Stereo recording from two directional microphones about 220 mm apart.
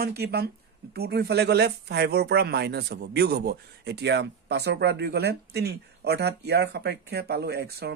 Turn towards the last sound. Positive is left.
turn(degrees=-45)  # may be behind; listen again after turning